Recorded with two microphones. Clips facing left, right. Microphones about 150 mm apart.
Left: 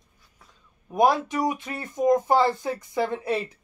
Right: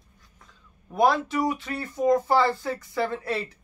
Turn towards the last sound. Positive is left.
turn(degrees=15)  # may be behind; listen again after turning